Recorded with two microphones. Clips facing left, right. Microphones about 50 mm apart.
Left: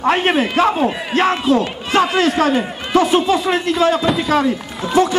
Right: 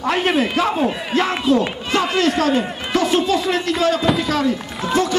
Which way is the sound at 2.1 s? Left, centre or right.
Left.